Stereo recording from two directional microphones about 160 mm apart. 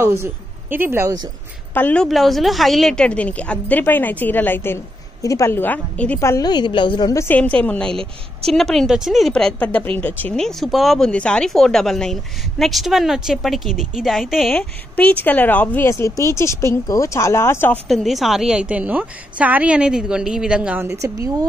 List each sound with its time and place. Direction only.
0.0 s a woman's voice: 15° right (ahead or behind)
1.7 s a woman's voice: 10° left (ahead or behind)
2.0 s a woman's voice: centre (ahead or behind)
6.1 s a woman's voice: 20° left (ahead or behind)
7.2 s a woman's voice: 10° left (ahead or behind)
17.8 s speech: centre (ahead or behind)